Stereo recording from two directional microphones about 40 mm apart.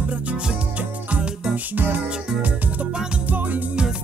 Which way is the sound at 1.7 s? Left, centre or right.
Right.